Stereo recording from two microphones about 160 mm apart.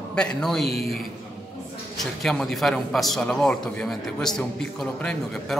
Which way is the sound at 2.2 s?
5° left (ahead or behind).